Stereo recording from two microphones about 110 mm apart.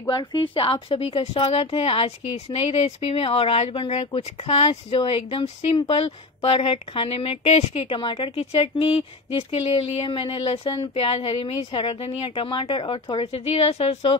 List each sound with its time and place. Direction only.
0.1 s a woman's voice: 45° left (ahead or behind); by 10.0 s 65° left (ahead or behind)
10.0 s a woman's voice: 55° left (ahead or behind)